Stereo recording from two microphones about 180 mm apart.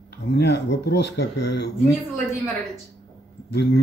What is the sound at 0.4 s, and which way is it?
Speech, 70° left (ahead or behind).